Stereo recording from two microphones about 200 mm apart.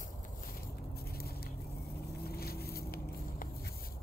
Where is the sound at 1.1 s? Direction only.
50° left (ahead or behind).